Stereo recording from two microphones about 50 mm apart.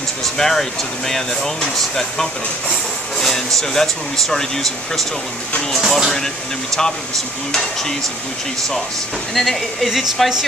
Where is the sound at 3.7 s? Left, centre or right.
Centre.